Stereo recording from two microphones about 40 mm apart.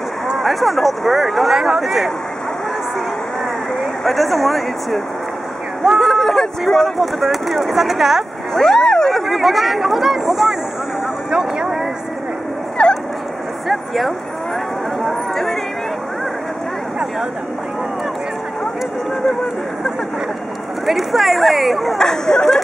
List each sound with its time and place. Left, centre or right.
0.4 s speech: centre
3.8 s speech: centre
8.5 s a sound: centre
9.2 s speech: centre
11.2 s vehicle: centre
12.8 s dog: left
13.7 s speech: centre
15.0 s a sound: centre
20.8 s speech: centre